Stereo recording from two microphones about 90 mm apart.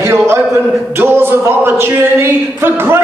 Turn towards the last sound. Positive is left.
turn(degrees=-25)  # may be behind; listen again after turning